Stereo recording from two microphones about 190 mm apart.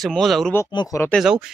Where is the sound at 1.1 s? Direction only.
5° right (ahead or behind).